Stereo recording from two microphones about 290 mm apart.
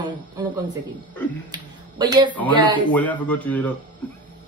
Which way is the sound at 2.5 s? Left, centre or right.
Centre.